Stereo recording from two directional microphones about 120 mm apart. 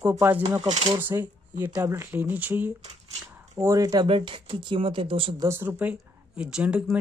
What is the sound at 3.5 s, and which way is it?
Speech, 25° right (ahead or behind).